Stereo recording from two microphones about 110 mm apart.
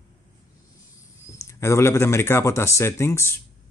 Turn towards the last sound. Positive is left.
turn(degrees=25)  # may be behind; listen again after turning